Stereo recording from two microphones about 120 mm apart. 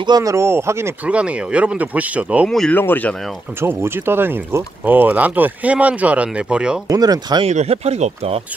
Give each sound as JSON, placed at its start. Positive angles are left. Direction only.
{"t": 0.0, "sound": "speech", "side_deg": -30}
{"t": 1.0, "sound": "speech", "side_deg": -10}
{"t": 2.7, "sound": "speech", "side_deg": 15}
{"t": 3.6, "sound": "speech", "side_deg": -20}
{"t": 6.9, "sound": "speech", "side_deg": -30}
{"t": 7.4, "sound": "speech", "side_deg": -60}